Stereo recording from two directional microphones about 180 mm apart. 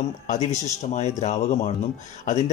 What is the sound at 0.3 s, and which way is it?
Speech, 40° left (ahead or behind).